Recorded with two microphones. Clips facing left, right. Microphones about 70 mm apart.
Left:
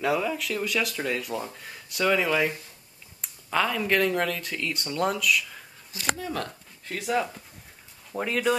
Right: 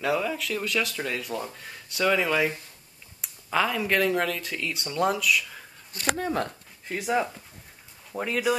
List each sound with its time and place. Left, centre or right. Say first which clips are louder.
0.0 s speech: left 1 dB; centre
6.9 s speech: right 1 dB; centre
8.1 s speech: left 1 dB; centre